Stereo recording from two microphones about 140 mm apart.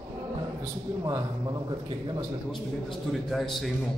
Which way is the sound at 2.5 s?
Centre (ahead or behind).